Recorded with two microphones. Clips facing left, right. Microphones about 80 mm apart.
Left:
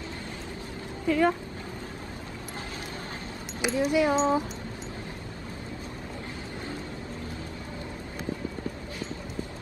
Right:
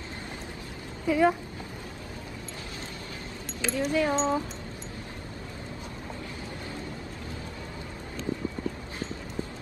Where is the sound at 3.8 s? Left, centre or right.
Centre.